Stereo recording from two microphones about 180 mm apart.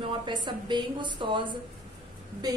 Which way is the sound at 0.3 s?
25° right (ahead or behind).